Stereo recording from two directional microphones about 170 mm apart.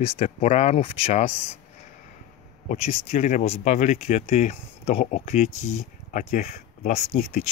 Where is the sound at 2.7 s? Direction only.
40° left (ahead or behind).